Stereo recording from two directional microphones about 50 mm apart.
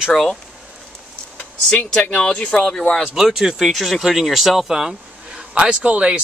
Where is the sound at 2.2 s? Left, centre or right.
Left.